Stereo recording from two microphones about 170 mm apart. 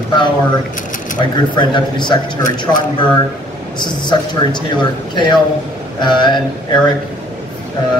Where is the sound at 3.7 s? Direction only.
25° left (ahead or behind).